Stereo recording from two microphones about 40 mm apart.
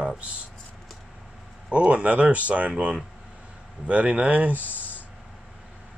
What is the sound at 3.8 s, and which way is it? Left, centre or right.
Speech, right.